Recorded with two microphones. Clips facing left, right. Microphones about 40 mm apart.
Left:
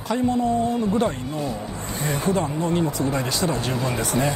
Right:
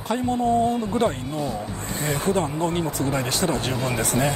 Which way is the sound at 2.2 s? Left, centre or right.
Right.